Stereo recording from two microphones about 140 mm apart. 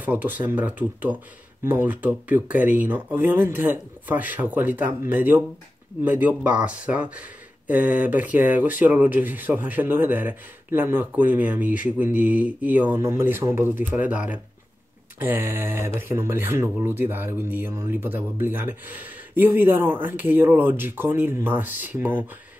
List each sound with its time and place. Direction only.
0.0 s speech: 10° right (ahead or behind)